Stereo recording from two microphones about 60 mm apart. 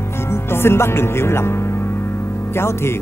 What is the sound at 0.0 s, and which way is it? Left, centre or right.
Music, left.